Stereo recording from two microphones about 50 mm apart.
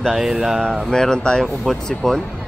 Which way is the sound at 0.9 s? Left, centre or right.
Centre.